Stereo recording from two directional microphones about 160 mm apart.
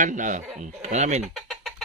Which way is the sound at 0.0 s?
50° right (ahead or behind).